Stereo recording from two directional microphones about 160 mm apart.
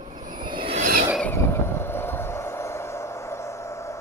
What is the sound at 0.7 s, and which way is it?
Filing, 55° right (ahead or behind).